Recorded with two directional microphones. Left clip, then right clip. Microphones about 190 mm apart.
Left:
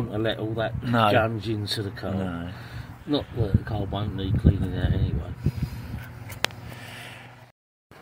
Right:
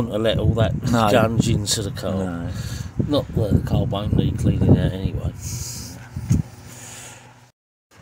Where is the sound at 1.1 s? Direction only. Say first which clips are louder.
Right 5 dB; 90° right.